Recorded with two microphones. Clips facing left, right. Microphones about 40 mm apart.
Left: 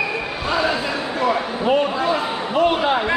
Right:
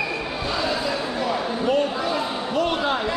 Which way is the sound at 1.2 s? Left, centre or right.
Left.